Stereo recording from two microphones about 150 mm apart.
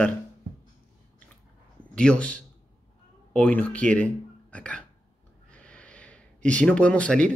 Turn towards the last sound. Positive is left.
turn(degrees=10)  # may be behind; listen again after turning